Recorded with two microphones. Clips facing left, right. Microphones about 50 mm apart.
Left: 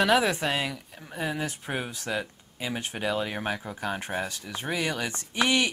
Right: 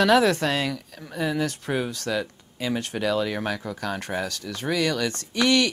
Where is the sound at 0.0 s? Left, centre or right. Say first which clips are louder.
Right 4 dB; centre.